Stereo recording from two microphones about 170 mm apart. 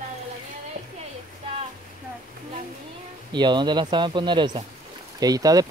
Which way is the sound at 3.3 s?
25° right (ahead or behind).